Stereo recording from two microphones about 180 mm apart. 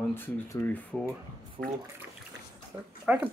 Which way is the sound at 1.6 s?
20° right (ahead or behind).